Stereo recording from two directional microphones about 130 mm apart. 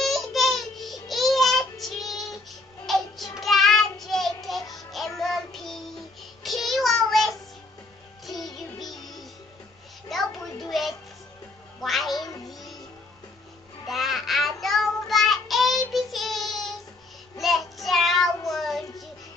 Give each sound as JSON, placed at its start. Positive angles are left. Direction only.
{"t": 0.0, "sound": "child singing", "side_deg": 0}
{"t": 3.3, "sound": "music", "side_deg": 0}
{"t": 6.4, "sound": "child singing", "side_deg": 0}
{"t": 8.7, "sound": "music", "side_deg": 0}
{"t": 10.0, "sound": "a sound", "side_deg": 0}
{"t": 10.6, "sound": "music", "side_deg": 0}
{"t": 13.8, "sound": "child singing", "side_deg": 0}